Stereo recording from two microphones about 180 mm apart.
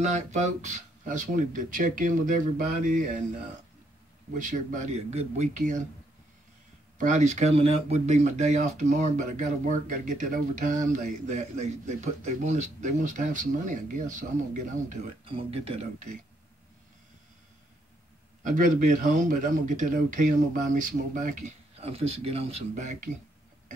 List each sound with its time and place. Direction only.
0.0 s speech: 40° right (ahead or behind)
4.3 s speech: 45° right (ahead or behind)
7.0 s speech: 45° right (ahead or behind)
15.2 s speech: 30° right (ahead or behind)
18.4 s speech: 45° right (ahead or behind)